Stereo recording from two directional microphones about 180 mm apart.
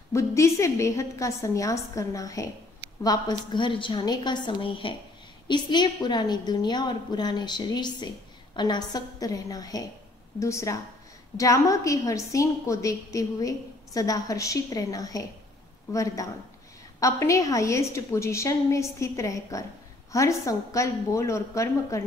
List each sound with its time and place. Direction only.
0.1 s a woman's voice: 15° left (ahead or behind)